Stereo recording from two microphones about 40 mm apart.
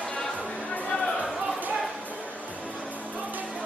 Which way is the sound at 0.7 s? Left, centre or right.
Left.